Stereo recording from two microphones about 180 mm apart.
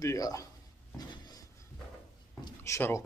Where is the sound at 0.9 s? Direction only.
20° left (ahead or behind).